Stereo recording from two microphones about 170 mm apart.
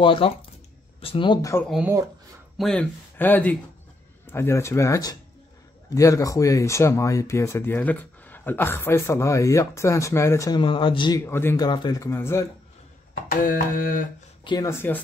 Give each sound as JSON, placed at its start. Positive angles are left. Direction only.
{"t": 0.0, "sound": "speech", "side_deg": 30}
{"t": 2.5, "sound": "speech", "side_deg": 5}
{"t": 11.2, "sound": "speech", "side_deg": 15}
{"t": 13.1, "sound": "music", "side_deg": 55}
{"t": 14.4, "sound": "speech", "side_deg": 25}
{"t": 14.7, "sound": "speech", "side_deg": 15}